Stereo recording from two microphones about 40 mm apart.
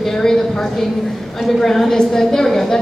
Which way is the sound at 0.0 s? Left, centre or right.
Centre.